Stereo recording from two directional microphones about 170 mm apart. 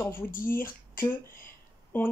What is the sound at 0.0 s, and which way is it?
Speech, 15° left (ahead or behind).